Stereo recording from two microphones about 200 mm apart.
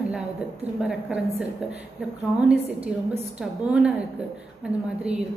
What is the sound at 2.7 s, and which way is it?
Speech, 30° right (ahead or behind).